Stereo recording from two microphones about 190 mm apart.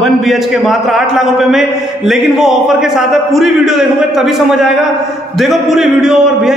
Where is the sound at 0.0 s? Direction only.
Centre (ahead or behind).